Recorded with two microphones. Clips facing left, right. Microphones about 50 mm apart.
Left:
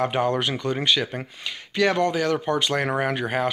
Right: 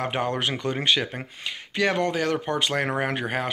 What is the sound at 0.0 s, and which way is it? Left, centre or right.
Speech, right.